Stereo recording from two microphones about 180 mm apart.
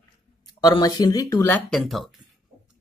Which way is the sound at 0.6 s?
20° left (ahead or behind).